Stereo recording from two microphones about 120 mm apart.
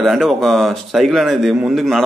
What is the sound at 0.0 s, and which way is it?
A man's voice, centre (ahead or behind).